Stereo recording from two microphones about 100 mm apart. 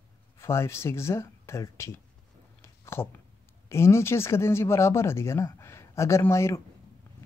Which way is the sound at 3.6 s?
25° left (ahead or behind).